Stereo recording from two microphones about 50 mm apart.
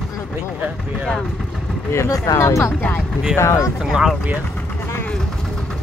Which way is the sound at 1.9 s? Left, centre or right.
Left.